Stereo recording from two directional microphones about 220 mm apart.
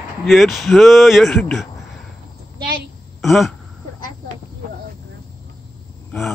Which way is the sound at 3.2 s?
Centre (ahead or behind).